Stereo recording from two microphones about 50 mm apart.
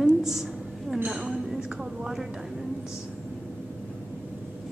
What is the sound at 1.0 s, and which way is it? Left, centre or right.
Speech, centre.